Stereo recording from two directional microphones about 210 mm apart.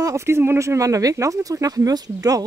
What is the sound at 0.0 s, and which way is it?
Speech, 15° right (ahead or behind).